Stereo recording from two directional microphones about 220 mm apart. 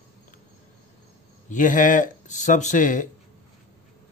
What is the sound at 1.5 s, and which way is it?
Speech, 35° left (ahead or behind).